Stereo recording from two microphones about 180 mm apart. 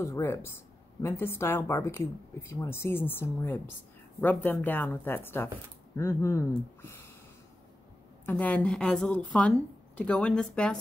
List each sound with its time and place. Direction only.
0.0 s a woman's voice: 15° left (ahead or behind)
8.3 s a woman's voice: 10° left (ahead or behind)